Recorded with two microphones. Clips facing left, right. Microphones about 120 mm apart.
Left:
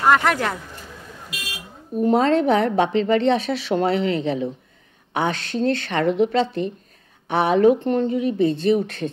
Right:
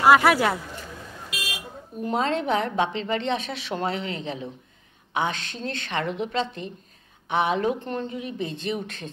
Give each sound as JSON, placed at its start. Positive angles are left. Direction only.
{"t": 0.0, "sound": "speech", "side_deg": -5}
{"t": 2.0, "sound": "speech", "side_deg": 40}